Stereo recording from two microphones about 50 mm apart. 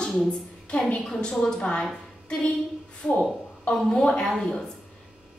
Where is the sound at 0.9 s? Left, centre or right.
Centre.